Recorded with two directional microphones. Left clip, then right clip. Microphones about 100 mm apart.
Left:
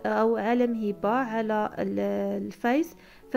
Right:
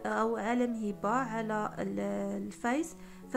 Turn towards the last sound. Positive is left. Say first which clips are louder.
# left 2 dB
turn(degrees=25)  # may be behind; listen again after turning